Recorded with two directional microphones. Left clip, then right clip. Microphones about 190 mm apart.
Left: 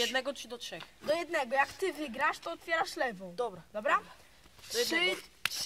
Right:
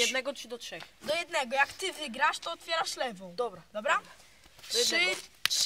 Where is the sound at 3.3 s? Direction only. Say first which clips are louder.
Right 2 dB; 25° right (ahead or behind).